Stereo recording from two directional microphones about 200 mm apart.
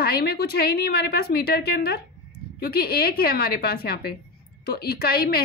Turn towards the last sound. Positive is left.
turn(degrees=50)  # may be behind; listen again after turning